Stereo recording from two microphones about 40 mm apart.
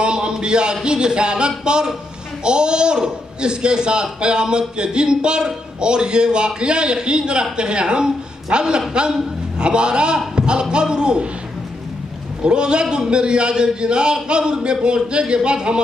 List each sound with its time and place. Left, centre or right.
0.0 s a man's voice: right
12.4 s a man's voice: right